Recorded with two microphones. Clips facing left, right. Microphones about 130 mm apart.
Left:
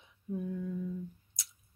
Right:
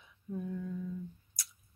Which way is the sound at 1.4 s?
20° left (ahead or behind).